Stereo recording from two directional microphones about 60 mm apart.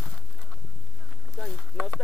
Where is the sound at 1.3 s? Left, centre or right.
Centre.